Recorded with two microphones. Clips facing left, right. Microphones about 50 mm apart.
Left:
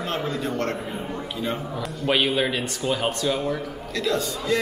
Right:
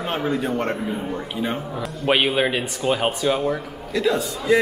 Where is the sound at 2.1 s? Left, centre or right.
Centre.